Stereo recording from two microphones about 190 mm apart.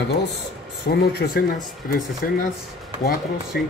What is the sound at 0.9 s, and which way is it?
Speech, 55° left (ahead or behind).